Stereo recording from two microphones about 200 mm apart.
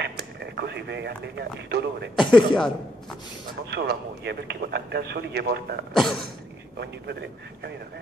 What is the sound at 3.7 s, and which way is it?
A man's voice, 55° right (ahead or behind).